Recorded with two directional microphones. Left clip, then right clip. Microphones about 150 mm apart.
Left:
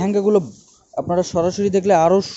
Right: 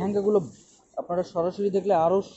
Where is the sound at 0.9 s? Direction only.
85° left.